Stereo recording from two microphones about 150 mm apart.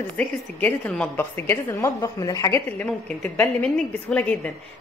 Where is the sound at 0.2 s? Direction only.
10° left (ahead or behind).